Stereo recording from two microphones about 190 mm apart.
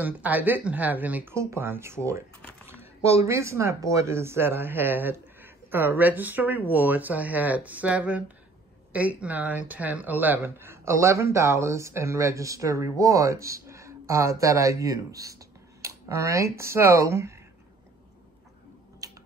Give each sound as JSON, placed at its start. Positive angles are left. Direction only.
{"t": 0.0, "sound": "speech", "side_deg": -10}
{"t": 19.0, "sound": "typing", "side_deg": -20}